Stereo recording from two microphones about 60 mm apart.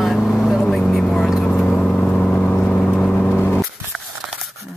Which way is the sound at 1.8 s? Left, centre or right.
Centre.